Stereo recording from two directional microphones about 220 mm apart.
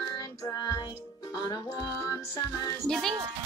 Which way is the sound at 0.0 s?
15° left (ahead or behind).